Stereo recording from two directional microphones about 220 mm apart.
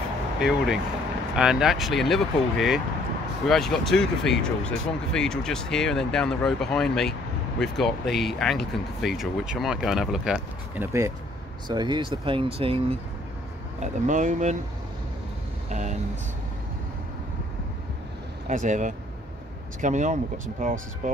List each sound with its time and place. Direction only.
0.4 s speech: 5° right (ahead or behind); by 14.6 s 35° right (ahead or behind)
15.7 s speech: 30° right (ahead or behind)
18.5 s speech: 35° right (ahead or behind)